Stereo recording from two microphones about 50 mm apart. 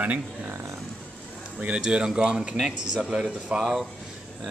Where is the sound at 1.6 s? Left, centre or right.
Centre.